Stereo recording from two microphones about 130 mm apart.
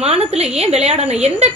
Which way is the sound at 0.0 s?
50° right (ahead or behind).